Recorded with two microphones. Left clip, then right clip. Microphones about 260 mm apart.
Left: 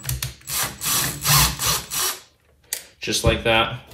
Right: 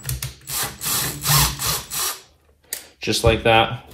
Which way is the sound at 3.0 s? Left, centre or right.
Right.